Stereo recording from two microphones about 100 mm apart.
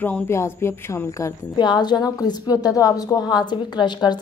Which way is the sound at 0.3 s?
25° left (ahead or behind).